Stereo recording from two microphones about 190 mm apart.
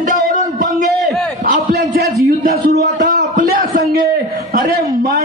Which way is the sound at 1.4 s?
45° right (ahead or behind).